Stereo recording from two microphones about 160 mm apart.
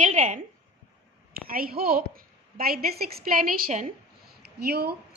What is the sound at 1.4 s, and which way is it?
A woman's voice, 65° right (ahead or behind).